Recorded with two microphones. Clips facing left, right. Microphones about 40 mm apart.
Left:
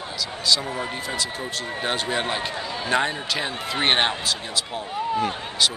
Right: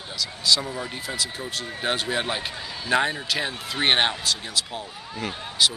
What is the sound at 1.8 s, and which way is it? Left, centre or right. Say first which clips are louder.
Speech: even; centre.